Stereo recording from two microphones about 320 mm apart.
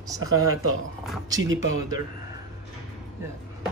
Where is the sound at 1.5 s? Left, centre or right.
Right.